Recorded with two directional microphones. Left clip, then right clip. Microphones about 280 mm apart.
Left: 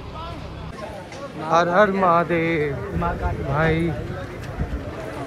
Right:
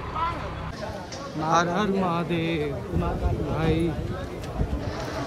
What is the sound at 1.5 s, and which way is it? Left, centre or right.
Speech, centre.